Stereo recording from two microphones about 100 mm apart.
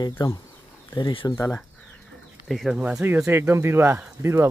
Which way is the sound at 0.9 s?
50° left (ahead or behind).